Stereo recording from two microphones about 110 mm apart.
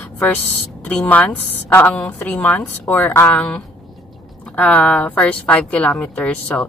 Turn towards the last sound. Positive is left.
turn(degrees=10)  # may be behind; listen again after turning